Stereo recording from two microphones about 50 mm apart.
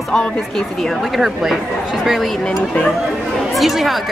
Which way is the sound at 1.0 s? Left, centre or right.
Centre.